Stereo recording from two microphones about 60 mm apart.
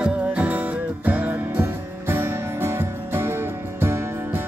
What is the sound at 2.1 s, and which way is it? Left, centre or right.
Music, right.